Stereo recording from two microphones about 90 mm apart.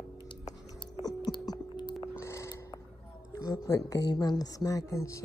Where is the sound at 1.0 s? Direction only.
45° left (ahead or behind).